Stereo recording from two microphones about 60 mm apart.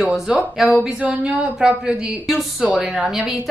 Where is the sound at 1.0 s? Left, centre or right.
Centre.